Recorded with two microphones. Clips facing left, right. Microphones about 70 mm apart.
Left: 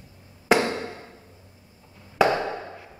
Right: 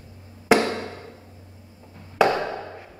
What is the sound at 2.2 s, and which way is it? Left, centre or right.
Chop, right.